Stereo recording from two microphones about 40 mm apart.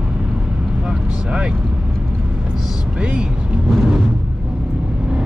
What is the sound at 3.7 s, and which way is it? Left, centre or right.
Music, centre.